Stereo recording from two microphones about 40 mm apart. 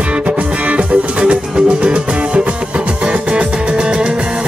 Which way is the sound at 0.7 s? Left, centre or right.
Right.